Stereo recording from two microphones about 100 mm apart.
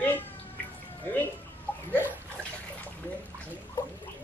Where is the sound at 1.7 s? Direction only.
20° left (ahead or behind).